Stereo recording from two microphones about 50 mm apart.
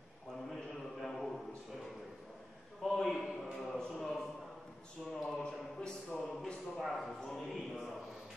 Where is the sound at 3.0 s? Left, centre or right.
Centre.